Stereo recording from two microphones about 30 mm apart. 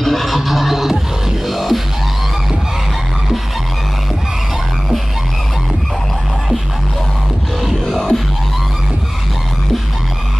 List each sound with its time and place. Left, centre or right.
0.0 s music: centre
7.9 s music: centre